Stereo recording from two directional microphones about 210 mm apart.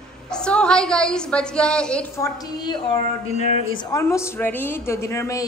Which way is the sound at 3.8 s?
15° left (ahead or behind).